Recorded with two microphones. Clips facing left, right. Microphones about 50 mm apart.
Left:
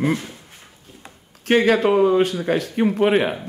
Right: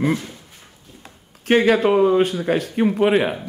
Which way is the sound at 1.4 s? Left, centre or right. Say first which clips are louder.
Right 1 dB; centre.